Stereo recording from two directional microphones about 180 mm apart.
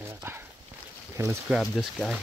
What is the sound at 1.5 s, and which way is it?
Speech, centre (ahead or behind).